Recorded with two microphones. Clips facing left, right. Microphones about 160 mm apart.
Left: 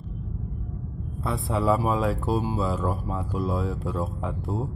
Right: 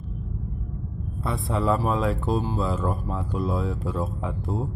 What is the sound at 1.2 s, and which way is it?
Speech, centre (ahead or behind).